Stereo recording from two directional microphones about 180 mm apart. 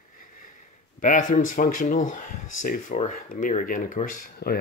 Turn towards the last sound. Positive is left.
turn(degrees=50)  # may be behind; listen again after turning